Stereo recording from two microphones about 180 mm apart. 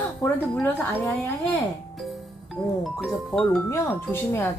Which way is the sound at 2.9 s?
Centre (ahead or behind).